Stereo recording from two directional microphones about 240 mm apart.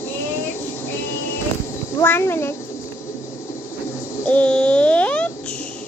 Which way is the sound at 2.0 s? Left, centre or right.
Centre.